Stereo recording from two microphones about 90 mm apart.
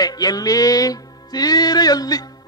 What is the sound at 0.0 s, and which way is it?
Music, 45° left (ahead or behind).